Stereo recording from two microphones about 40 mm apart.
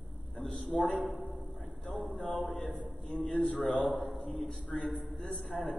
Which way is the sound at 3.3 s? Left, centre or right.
Left.